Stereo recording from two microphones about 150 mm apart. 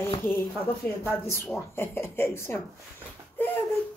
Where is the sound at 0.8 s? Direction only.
5° left (ahead or behind).